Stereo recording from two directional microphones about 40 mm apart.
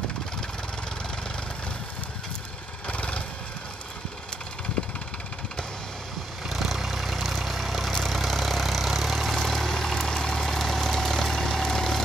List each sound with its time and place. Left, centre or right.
2.9 s vehicle: left
6.4 s vehicle: centre
9.4 s vehicle: centre